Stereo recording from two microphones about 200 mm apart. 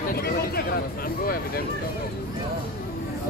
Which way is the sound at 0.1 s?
50° left (ahead or behind).